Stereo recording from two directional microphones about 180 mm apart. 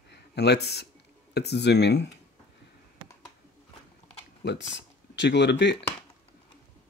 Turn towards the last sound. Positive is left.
turn(degrees=70)  # may be behind; listen again after turning